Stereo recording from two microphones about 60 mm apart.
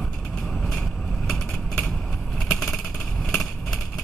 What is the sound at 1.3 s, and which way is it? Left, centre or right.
Vehicle, centre.